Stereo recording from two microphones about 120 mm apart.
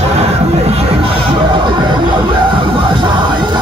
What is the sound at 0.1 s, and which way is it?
Music, 60° right (ahead or behind).